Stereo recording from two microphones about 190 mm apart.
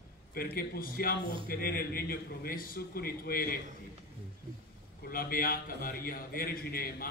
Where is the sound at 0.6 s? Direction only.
50° left (ahead or behind).